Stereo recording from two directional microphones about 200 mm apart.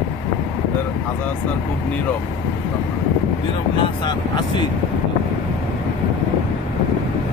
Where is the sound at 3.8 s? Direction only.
25° left (ahead or behind).